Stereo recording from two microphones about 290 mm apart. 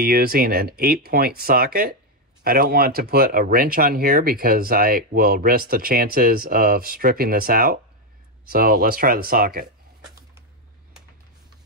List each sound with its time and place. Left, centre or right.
0.0 s speech: right